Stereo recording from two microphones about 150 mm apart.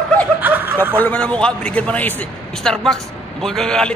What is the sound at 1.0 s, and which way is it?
A man's voice, 10° left (ahead or behind).